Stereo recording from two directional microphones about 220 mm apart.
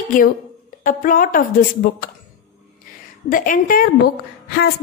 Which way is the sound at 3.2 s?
40° left (ahead or behind).